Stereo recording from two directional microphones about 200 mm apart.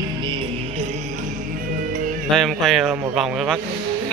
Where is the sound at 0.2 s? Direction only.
25° right (ahead or behind).